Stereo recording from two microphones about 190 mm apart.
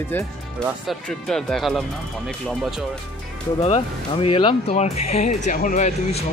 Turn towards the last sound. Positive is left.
turn(degrees=40)  # may be behind; listen again after turning